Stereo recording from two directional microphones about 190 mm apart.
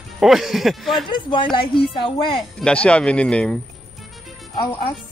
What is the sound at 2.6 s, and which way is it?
Speech, 5° left (ahead or behind).